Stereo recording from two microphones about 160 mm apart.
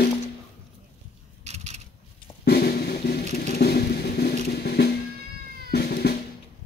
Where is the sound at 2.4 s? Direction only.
70° left (ahead or behind).